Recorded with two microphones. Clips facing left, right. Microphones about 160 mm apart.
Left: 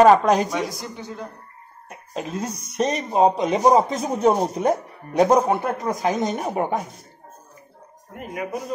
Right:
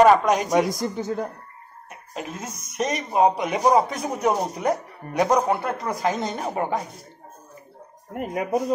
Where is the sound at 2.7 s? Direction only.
30° left (ahead or behind).